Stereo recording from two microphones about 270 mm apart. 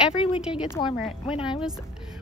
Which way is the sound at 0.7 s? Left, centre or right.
Centre.